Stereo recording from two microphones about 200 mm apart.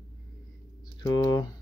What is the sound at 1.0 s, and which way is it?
Speech, 20° left (ahead or behind).